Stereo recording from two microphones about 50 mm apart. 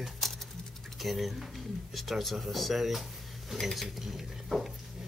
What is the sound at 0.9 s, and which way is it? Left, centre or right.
Speech, centre.